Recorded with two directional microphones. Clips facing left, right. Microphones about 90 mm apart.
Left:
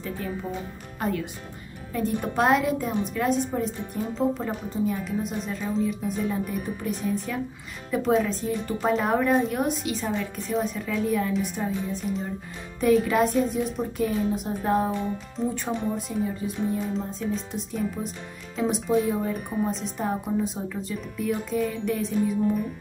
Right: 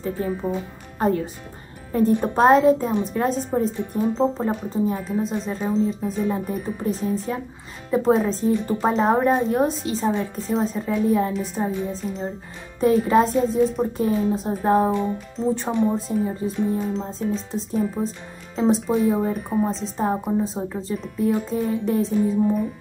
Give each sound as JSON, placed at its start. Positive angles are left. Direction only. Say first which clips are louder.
{"t": 0.0, "sound": "a child's voice", "louder": "right 6 dB", "side_deg": -30}